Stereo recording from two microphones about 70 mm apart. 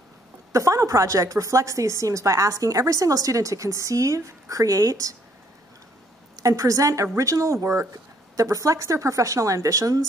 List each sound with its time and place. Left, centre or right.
0.5 s a woman's voice: right
6.3 s a woman's voice: right